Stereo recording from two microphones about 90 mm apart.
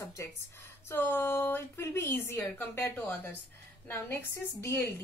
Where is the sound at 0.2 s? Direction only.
30° left (ahead or behind).